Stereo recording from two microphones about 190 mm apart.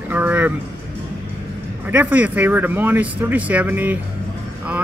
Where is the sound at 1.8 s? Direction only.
10° right (ahead or behind).